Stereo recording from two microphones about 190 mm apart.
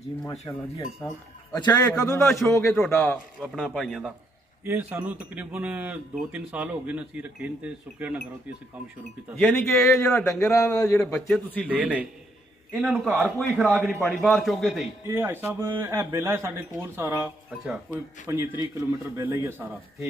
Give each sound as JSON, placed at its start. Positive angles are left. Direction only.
{"t": 0.2, "sound": "a man's voice", "side_deg": 15}
{"t": 2.7, "sound": "speech", "side_deg": 0}
{"t": 4.6, "sound": "speech", "side_deg": -10}
{"t": 9.3, "sound": "speech", "side_deg": 10}
{"t": 10.4, "sound": "a man's voice", "side_deg": 15}
{"t": 15.0, "sound": "speech", "side_deg": -10}